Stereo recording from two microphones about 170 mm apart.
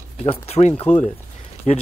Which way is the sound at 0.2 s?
40° left (ahead or behind).